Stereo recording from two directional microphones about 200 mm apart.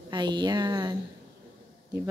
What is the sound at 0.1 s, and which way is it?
Speech, 25° right (ahead or behind).